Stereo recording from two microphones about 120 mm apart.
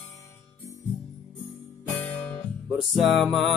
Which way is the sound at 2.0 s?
15° left (ahead or behind).